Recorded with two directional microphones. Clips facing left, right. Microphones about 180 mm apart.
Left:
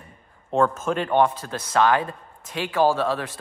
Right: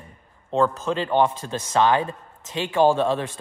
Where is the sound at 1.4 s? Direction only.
15° right (ahead or behind).